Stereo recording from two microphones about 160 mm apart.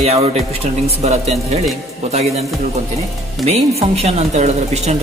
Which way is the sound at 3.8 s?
40° right (ahead or behind).